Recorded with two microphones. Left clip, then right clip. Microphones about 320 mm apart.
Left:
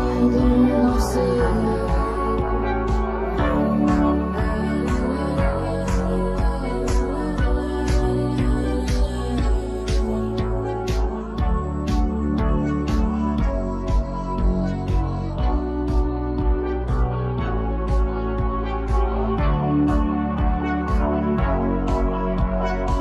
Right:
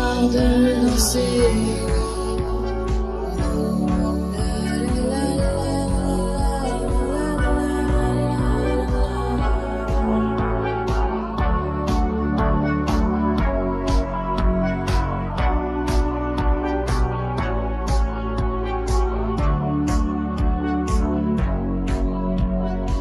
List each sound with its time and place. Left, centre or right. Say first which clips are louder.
0.0 s music: right 1 dB; right